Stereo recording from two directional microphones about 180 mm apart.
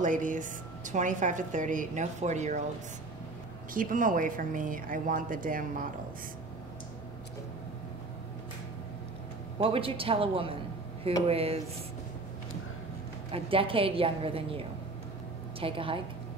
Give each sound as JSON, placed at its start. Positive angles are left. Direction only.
{"t": 0.0, "sound": "a woman's voice", "side_deg": -45}
{"t": 3.7, "sound": "a woman's voice", "side_deg": -50}
{"t": 9.6, "sound": "a woman's voice", "side_deg": -30}
{"t": 13.3, "sound": "a woman's voice", "side_deg": -30}
{"t": 15.6, "sound": "a woman's voice", "side_deg": -30}